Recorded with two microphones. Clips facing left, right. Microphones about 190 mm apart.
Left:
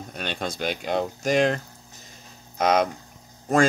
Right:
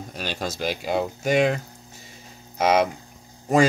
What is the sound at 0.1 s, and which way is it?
Speech, centre (ahead or behind).